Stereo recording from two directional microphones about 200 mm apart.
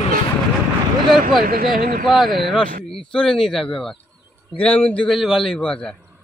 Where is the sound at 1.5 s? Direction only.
50° right (ahead or behind).